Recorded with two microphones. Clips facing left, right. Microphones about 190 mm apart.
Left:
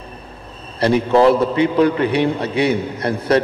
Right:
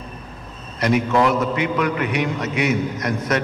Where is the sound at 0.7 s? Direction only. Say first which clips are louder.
Left 4 dB; 30° left (ahead or behind).